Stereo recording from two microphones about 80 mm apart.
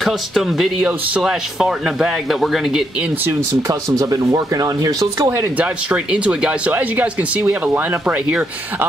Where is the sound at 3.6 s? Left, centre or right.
Right.